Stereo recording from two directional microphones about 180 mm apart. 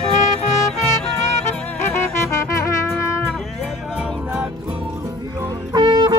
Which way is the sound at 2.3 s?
15° left (ahead or behind).